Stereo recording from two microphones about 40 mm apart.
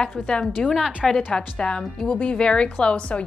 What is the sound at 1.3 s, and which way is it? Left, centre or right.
Speech, left.